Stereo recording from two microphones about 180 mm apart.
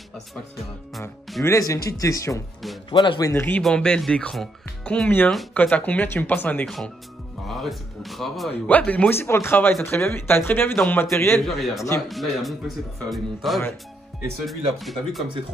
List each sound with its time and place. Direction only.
1.4 s speech: 15° left (ahead or behind)
11.4 s speech: centre (ahead or behind)